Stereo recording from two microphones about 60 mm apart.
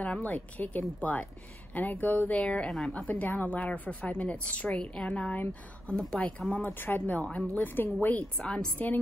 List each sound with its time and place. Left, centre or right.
0.0 s a woman's voice: left; by 3.0 s centre
3.0 s a woman's voice: left
6.7 s a woman's voice: left
8.4 s speech: centre
8.7 s a woman's voice: left